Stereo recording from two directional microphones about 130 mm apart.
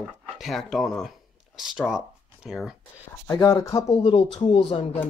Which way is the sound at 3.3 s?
20° left (ahead or behind).